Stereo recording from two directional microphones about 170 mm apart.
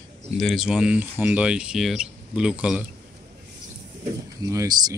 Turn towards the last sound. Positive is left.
turn(degrees=-20)  # may be behind; listen again after turning